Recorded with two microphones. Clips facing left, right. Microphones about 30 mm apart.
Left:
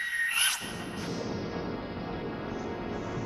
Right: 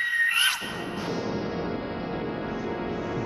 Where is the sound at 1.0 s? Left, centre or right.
Right.